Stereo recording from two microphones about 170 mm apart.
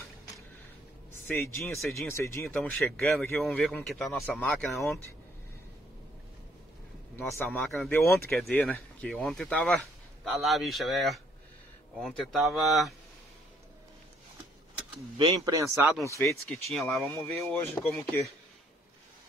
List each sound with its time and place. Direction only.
1.2 s speech: 15° left (ahead or behind)
1.8 s speech: centre (ahead or behind)
2.0 s speech: 15° left (ahead or behind)
7.2 s speech: 15° left (ahead or behind)
15.1 s speech: 25° right (ahead or behind)
16.0 s speech: 15° left (ahead or behind)
16.3 s speech: centre (ahead or behind)
17.5 s speech: 15° left (ahead or behind)